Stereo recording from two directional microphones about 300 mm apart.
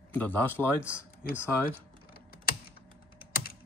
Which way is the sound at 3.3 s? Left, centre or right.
Left.